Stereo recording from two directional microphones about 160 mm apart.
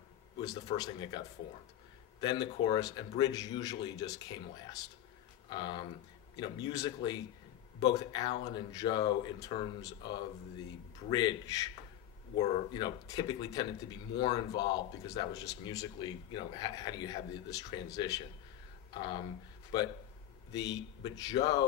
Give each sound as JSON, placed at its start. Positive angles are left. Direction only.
{"t": 0.7, "sound": "speech", "side_deg": 30}
{"t": 5.5, "sound": "speech", "side_deg": 30}
{"t": 21.0, "sound": "speech", "side_deg": 25}